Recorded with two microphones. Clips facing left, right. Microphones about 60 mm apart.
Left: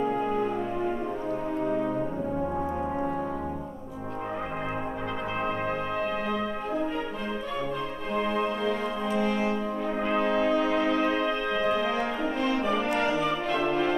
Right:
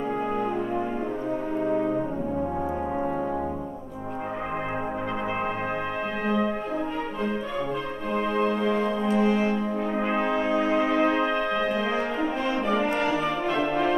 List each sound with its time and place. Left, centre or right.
1.7 s french horn: centre
8.1 s music: centre
9.2 s brass instrument: centre
11.5 s music: centre
11.9 s french horn: centre
13.5 s music: centre